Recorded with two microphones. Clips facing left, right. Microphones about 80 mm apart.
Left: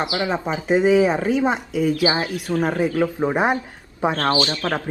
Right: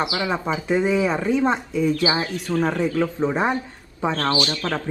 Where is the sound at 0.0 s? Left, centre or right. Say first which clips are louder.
Left 1 dB; left.